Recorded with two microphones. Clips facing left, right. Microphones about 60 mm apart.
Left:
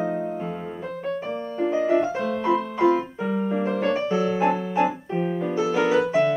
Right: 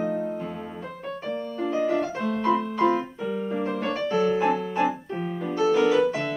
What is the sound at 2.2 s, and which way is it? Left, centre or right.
Music, centre.